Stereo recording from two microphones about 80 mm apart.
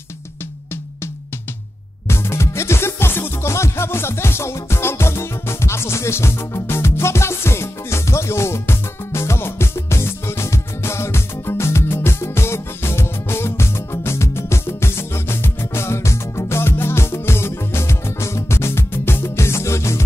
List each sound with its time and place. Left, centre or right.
2.0 s music: left